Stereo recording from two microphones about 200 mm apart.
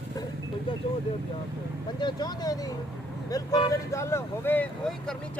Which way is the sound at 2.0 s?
20° left (ahead or behind).